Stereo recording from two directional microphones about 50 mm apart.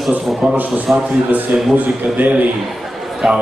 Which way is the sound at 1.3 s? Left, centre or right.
Right.